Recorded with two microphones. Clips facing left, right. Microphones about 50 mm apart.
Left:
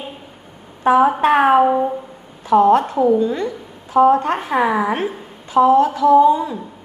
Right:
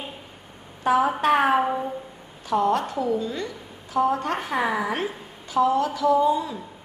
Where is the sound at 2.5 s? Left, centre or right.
Left.